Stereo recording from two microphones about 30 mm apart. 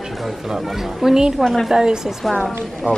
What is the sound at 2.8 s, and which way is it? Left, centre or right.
Speech, right.